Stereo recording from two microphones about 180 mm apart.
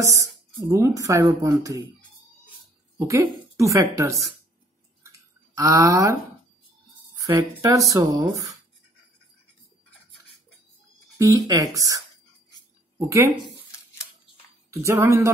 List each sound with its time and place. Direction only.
0.0 s speech: 15° right (ahead or behind)
3.1 s speech: 15° right (ahead or behind)
5.0 s a sound: 15° right (ahead or behind)
7.2 s speech: 20° right (ahead or behind)
11.1 s speech: 20° right (ahead or behind)
13.1 s speech: 15° right (ahead or behind)
14.7 s speech: 15° right (ahead or behind)